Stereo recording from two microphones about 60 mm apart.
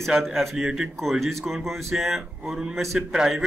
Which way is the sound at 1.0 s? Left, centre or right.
Centre.